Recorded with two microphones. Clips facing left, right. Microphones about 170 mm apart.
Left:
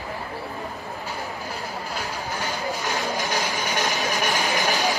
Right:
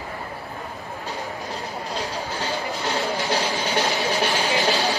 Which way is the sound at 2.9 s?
15° left (ahead or behind).